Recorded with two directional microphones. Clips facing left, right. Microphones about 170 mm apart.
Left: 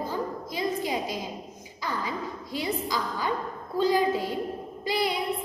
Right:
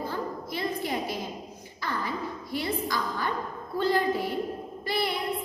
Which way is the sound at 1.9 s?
15° left (ahead or behind).